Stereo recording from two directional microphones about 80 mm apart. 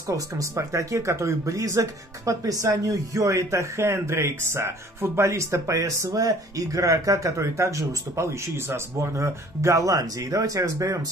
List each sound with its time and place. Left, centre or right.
0.4 s speech: right